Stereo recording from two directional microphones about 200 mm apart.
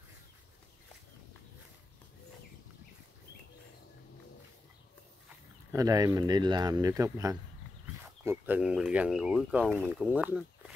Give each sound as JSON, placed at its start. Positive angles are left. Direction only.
{"t": 5.7, "sound": "speech", "side_deg": -15}